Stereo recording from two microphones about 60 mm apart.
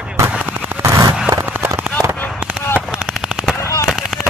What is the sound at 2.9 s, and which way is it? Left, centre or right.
Machine gun, centre.